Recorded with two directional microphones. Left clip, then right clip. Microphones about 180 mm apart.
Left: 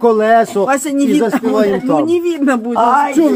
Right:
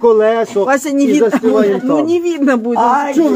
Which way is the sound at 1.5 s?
25° left (ahead or behind).